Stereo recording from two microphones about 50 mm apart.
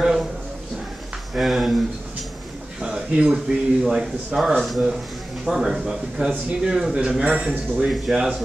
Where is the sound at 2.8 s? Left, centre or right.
Centre.